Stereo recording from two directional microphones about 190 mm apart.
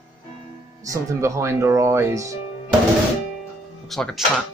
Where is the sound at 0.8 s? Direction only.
15° right (ahead or behind).